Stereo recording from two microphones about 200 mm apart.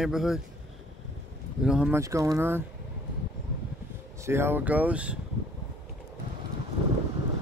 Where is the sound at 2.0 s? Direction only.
15° right (ahead or behind).